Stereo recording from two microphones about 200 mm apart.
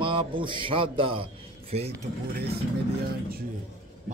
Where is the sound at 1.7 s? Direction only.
30° right (ahead or behind).